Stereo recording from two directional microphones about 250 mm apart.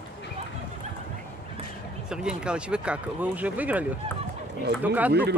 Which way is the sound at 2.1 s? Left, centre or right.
Centre.